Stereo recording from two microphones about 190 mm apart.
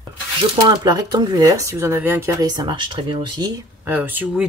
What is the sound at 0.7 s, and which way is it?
Speech, 20° right (ahead or behind).